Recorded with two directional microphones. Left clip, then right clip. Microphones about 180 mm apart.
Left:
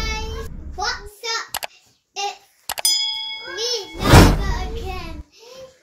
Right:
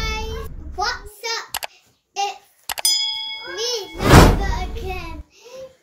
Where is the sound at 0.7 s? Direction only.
15° right (ahead or behind).